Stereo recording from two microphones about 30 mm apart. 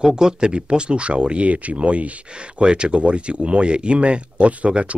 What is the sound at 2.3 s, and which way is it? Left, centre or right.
Speech, right.